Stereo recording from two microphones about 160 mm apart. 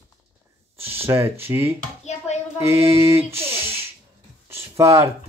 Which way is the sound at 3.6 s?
15° right (ahead or behind).